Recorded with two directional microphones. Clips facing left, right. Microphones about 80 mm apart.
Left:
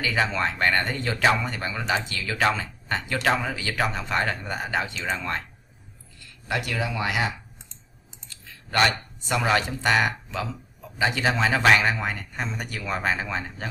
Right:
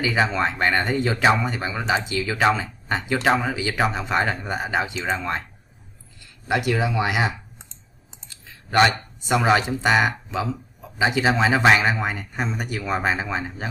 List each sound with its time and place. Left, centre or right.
0.0 s speech: centre
8.3 s clicking: centre
9.3 s speech: centre